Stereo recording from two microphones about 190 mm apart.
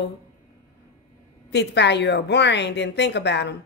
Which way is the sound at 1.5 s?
65° left (ahead or behind).